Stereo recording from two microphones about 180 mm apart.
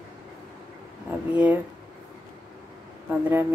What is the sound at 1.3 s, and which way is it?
Speech, 10° right (ahead or behind).